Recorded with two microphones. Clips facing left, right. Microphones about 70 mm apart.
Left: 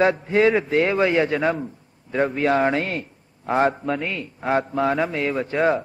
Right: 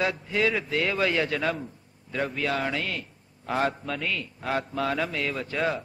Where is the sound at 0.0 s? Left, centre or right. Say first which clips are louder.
Left 8 dB; left.